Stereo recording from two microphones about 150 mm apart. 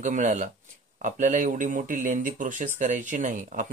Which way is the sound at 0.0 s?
55° right (ahead or behind).